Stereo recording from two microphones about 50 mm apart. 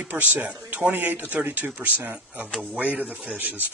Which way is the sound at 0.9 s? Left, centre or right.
Right.